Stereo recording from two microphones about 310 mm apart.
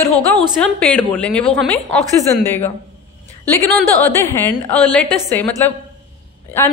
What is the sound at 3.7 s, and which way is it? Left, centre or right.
A woman's voice, centre.